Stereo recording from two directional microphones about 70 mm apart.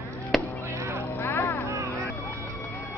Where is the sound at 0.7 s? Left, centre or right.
Right.